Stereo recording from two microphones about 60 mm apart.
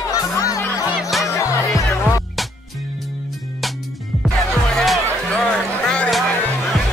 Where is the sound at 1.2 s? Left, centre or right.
Left.